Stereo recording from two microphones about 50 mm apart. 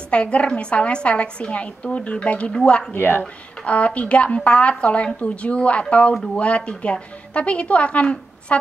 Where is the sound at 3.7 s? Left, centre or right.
Left.